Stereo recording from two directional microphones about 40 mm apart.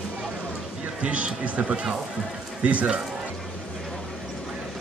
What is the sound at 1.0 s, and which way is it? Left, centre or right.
Speech, right.